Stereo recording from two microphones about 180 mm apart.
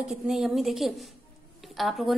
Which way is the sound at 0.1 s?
Centre (ahead or behind).